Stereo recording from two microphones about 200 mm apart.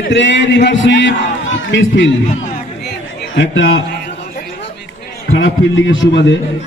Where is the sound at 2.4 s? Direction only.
40° left (ahead or behind).